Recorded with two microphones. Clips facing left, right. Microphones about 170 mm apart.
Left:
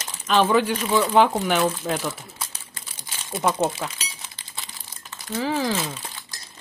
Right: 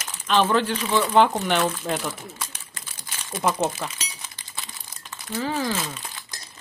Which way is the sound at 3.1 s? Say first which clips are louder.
Left 2 dB; 25° left (ahead or behind).